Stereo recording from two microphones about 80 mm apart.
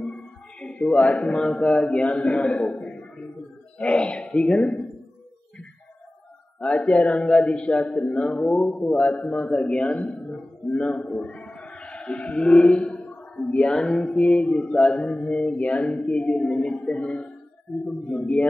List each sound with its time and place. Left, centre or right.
0.0 s speech: centre
4.5 s mantra: centre
6.8 s mantra: centre
8.5 s speech: centre
8.9 s mantra: centre
10.7 s a man's voice: centre
13.4 s mantra: centre